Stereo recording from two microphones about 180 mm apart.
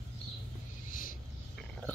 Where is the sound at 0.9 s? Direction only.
50° left (ahead or behind).